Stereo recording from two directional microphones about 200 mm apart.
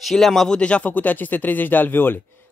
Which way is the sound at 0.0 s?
Centre (ahead or behind).